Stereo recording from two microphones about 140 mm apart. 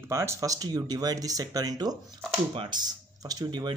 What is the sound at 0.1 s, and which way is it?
Speech, 20° right (ahead or behind).